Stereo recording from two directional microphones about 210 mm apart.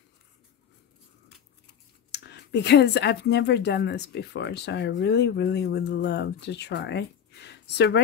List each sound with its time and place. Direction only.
2.0 s speech: 55° left (ahead or behind)